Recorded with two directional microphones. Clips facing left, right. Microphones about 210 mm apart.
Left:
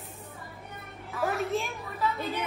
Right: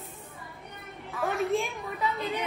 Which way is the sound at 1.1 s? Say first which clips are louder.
Right 1 dB; centre (ahead or behind).